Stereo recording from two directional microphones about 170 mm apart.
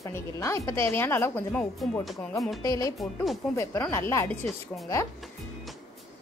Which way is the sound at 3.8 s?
15° left (ahead or behind).